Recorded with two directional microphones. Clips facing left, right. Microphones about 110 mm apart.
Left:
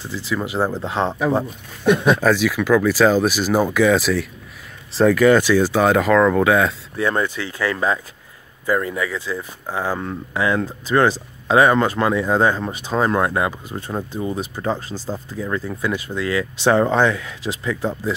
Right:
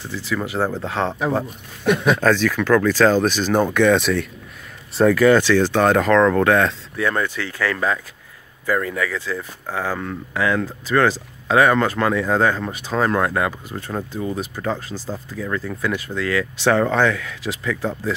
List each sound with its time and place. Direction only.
0.1 s speech: 15° left (ahead or behind)
5.2 s speech: 10° left (ahead or behind)
7.0 s speech: 25° left (ahead or behind)